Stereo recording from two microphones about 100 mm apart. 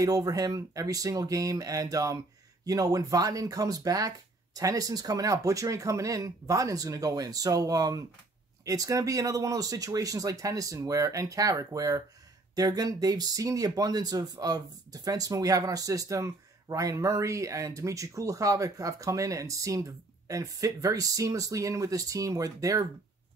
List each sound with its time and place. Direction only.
0.0 s speech: 35° right (ahead or behind)